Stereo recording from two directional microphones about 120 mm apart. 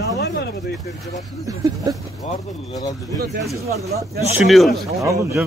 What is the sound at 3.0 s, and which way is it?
Speech, 30° right (ahead or behind).